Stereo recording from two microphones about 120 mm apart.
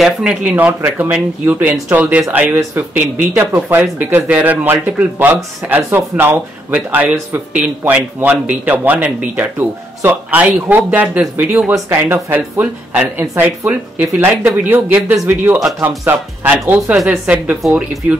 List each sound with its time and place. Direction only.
0.0 s a man's voice: 5° right (ahead or behind)
16.6 s a man's voice: 15° right (ahead or behind)